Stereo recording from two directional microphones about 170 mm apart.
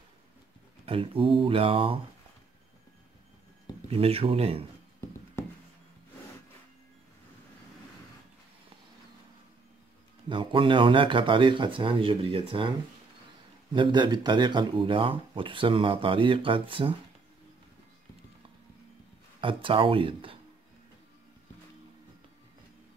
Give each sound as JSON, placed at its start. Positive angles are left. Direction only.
{"t": 0.8, "sound": "speech", "side_deg": -30}
{"t": 3.9, "sound": "speech", "side_deg": -35}
{"t": 10.2, "sound": "speech", "side_deg": -30}
{"t": 13.7, "sound": "speech", "side_deg": -30}
{"t": 19.4, "sound": "speech", "side_deg": -30}